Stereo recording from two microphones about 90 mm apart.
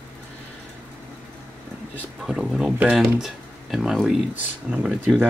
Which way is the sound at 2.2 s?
5° right (ahead or behind).